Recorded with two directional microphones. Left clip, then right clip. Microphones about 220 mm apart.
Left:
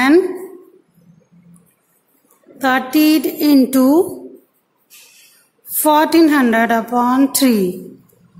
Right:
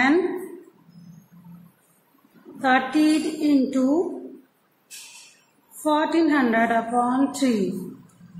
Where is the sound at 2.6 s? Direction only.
50° left (ahead or behind).